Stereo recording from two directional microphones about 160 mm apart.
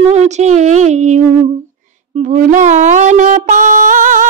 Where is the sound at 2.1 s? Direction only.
50° right (ahead or behind).